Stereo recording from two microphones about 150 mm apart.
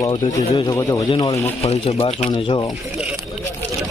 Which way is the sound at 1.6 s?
40° left (ahead or behind).